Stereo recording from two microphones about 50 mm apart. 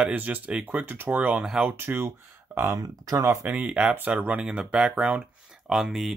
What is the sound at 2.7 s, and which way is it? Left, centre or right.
Speech, right.